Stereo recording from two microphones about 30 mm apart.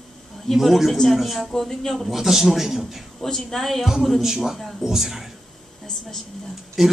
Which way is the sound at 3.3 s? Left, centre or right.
Centre.